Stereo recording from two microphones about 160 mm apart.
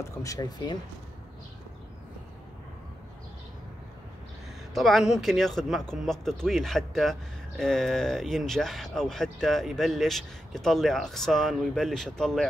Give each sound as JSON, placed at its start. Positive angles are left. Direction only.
{"t": 0.2, "sound": "speech", "side_deg": 20}
{"t": 4.7, "sound": "speech", "side_deg": 0}